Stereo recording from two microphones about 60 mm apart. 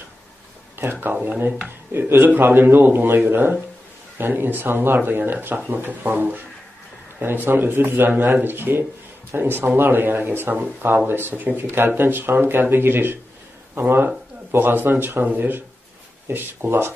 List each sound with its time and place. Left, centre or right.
2.0 s speech: right